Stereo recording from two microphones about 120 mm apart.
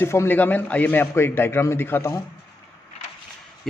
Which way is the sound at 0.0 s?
20° left (ahead or behind).